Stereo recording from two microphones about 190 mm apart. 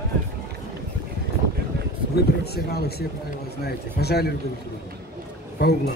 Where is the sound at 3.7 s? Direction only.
55° left (ahead or behind).